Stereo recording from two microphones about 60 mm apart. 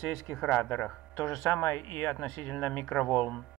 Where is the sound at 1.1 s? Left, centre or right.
Left.